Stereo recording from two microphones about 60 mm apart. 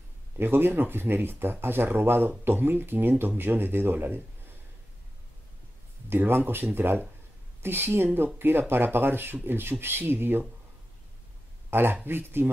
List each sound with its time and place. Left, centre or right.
0.4 s speech: right
6.0 s speech: right
11.7 s speech: right